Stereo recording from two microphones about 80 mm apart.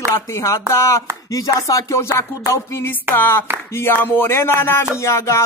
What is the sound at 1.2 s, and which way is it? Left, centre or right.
Speech, left.